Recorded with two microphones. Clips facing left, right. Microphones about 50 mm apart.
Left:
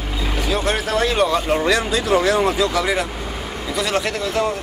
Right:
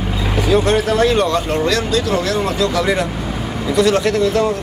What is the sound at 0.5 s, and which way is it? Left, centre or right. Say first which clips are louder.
Speech: right 7 dB; centre.